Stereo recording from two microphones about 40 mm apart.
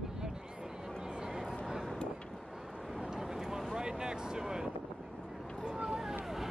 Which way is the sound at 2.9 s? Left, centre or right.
Centre.